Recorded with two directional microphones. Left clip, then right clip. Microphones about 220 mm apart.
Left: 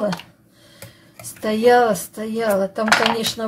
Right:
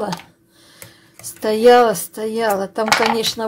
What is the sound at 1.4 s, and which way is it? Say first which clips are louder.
Speech: right 3 dB; 35° right (ahead or behind).